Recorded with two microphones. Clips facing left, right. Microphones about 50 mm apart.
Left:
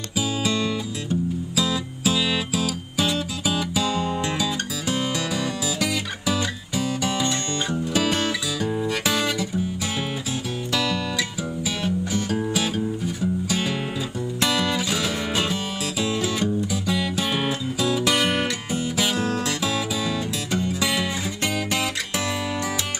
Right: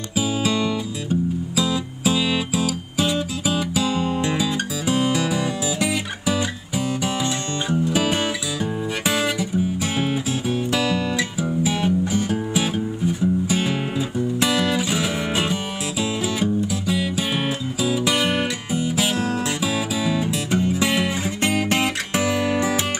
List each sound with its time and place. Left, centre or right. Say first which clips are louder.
0.1 s music: right 3 dB; centre
9.0 s guitar: right 2 dB; centre
10.7 s music: even; centre